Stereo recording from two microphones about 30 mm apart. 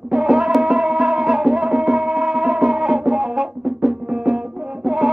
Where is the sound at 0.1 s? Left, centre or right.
Right.